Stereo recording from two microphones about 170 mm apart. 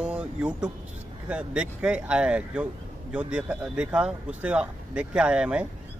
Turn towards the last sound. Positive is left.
turn(degrees=-5)  # may be behind; listen again after turning